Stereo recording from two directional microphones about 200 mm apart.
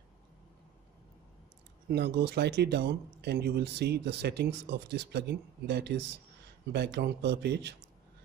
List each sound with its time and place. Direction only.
1.9 s speech: 55° right (ahead or behind)